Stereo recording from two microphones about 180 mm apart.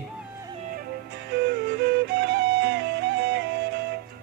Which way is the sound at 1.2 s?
65° right (ahead or behind).